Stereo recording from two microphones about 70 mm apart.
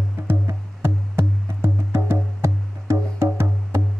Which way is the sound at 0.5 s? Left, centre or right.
Right.